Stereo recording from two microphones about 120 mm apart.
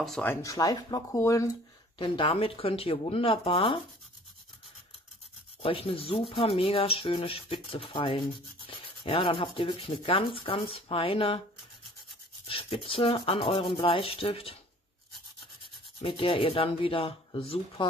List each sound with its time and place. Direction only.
0.2 s speech: 20° left (ahead or behind)
2.0 s speech: 45° left (ahead or behind)
5.6 s speech: 50° left (ahead or behind)
8.6 s rub: 50° left (ahead or behind)
9.8 s speech: 50° left (ahead or behind)
12.4 s speech: 50° left (ahead or behind)
16.0 s speech: 50° left (ahead or behind)